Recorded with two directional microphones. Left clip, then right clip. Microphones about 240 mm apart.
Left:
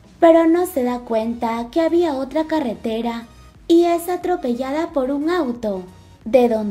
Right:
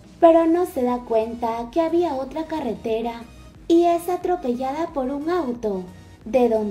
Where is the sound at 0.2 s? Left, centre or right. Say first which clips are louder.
Left 2 dB; left.